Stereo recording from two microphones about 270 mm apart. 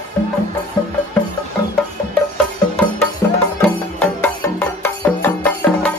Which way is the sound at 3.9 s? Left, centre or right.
Centre.